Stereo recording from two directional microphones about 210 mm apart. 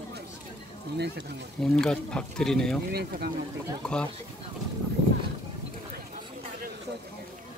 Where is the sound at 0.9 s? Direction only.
55° right (ahead or behind).